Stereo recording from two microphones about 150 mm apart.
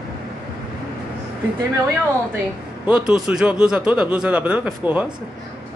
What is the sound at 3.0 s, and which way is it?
Speech, 5° right (ahead or behind).